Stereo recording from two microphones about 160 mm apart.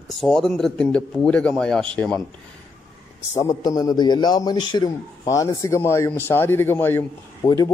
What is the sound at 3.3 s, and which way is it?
A man's voice, 25° left (ahead or behind).